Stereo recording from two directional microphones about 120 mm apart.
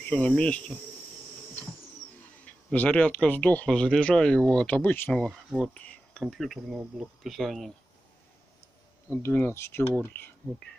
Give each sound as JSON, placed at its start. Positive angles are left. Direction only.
{"t": 0.0, "sound": "speech", "side_deg": 10}
{"t": 2.4, "sound": "speech", "side_deg": 15}
{"t": 5.6, "sound": "a sound", "side_deg": 10}
{"t": 6.2, "sound": "speech", "side_deg": 0}
{"t": 9.1, "sound": "speech", "side_deg": 20}